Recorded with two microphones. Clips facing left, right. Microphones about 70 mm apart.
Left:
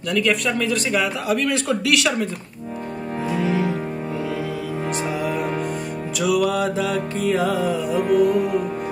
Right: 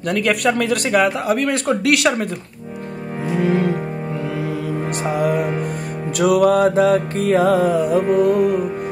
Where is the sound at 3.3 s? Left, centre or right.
Right.